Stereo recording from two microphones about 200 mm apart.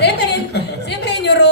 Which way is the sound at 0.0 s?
55° left (ahead or behind).